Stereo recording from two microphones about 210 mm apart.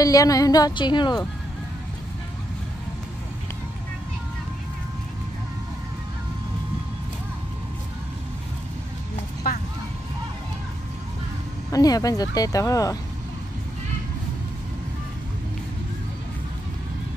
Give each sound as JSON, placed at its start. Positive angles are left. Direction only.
{"t": 0.0, "sound": "a woman's voice", "side_deg": 15}
{"t": 9.5, "sound": "vehicle", "side_deg": 45}
{"t": 11.7, "sound": "a woman's voice", "side_deg": 15}